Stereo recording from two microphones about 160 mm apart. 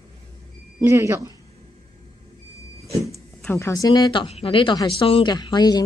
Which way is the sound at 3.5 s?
20° left (ahead or behind).